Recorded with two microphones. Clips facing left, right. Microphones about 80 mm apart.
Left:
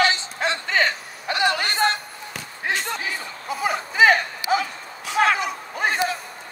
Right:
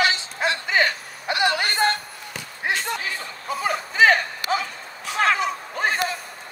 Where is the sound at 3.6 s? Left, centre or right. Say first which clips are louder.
Left 1 dB; centre.